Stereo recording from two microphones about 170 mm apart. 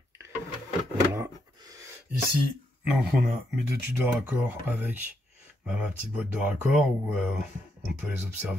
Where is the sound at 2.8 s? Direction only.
Centre (ahead or behind).